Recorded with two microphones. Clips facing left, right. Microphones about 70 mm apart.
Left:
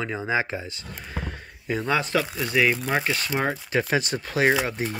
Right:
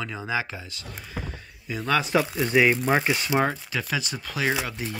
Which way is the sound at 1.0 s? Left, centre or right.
Left.